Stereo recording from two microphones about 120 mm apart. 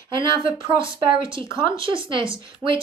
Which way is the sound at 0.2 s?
45° right (ahead or behind).